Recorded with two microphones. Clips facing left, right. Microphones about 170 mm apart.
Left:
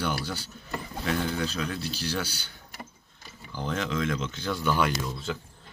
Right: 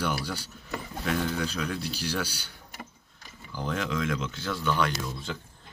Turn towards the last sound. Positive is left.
turn(degrees=5)  # may be behind; listen again after turning